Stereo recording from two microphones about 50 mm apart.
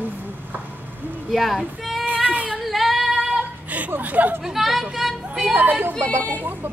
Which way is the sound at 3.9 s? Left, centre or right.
Right.